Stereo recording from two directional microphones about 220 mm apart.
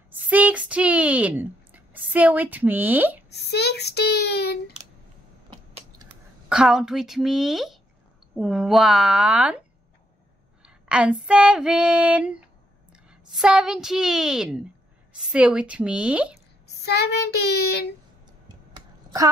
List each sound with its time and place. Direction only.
0.2 s speech: 5° right (ahead or behind)
3.4 s a child's voice: 50° left (ahead or behind)
5.5 s typing: 20° right (ahead or behind)
6.5 s a woman's voice: 5° right (ahead or behind)
10.6 s female singing: 5° right (ahead or behind)
13.3 s a woman's voice: 5° right (ahead or behind)
16.8 s a child's voice: 50° left (ahead or behind)